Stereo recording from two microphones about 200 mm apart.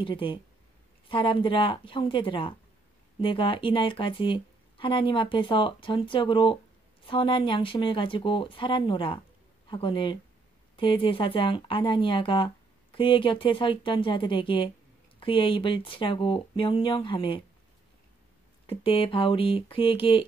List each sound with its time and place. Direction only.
0.0 s speech: 25° left (ahead or behind)
18.7 s speech: 30° left (ahead or behind)